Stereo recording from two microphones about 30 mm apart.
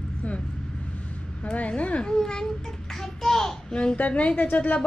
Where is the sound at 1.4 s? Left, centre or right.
Left.